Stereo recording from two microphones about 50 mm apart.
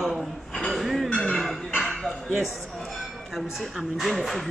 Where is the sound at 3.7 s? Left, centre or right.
Centre.